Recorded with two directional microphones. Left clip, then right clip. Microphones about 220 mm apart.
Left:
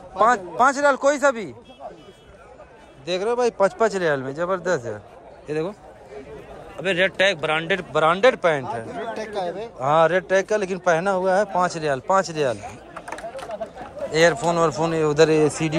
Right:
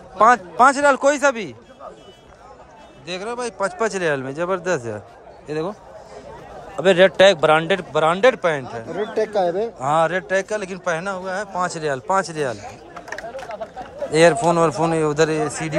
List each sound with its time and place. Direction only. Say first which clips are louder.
0.2 s a man's voice: right 4 dB; 10° right (ahead or behind)
3.1 s a man's voice: left 5 dB; 5° right (ahead or behind)
6.8 s a man's voice: right 7 dB; 20° right (ahead or behind)
8.9 s speech: right 7 dB; 50° right (ahead or behind)
9.8 s a man's voice: left 4 dB; 5° right (ahead or behind)
14.1 s a man's voice: right 4 dB; 20° right (ahead or behind)